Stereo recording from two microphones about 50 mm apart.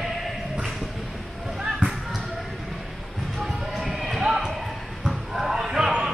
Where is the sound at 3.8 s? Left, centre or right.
Centre.